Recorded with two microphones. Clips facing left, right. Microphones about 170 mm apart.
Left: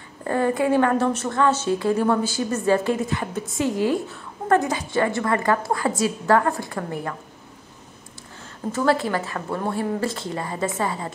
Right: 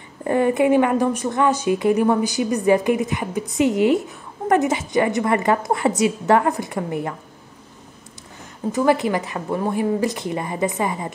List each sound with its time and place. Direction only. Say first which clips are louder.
0.2 s a woman's voice: right 4 dB; 15° right (ahead or behind)
8.7 s a woman's voice: right 3 dB; 15° right (ahead or behind)